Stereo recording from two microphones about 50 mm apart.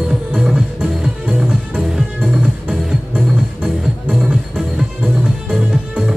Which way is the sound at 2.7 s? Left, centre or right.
Right.